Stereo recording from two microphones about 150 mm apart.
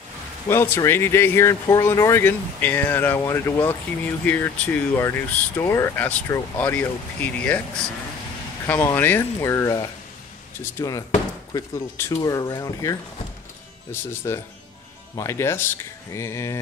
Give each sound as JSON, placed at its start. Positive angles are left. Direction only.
{"t": 0.5, "sound": "speech", "side_deg": 15}
{"t": 8.6, "sound": "speech", "side_deg": 15}
{"t": 14.2, "sound": "speech", "side_deg": 20}